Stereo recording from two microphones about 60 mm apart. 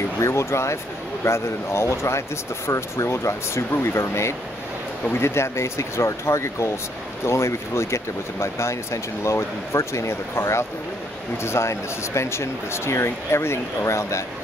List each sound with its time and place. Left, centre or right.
0.2 s speech: left